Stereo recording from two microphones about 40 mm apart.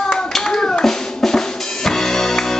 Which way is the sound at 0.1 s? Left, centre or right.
Centre.